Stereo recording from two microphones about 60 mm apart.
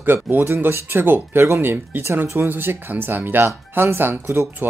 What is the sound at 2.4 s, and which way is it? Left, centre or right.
Speech, right.